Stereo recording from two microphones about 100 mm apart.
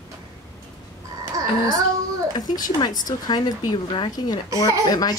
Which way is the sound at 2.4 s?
40° left (ahead or behind).